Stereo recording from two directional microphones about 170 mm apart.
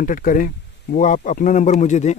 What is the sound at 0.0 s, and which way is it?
Speech, 55° left (ahead or behind).